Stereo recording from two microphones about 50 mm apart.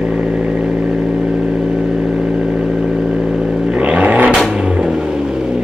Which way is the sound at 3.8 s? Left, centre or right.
Right.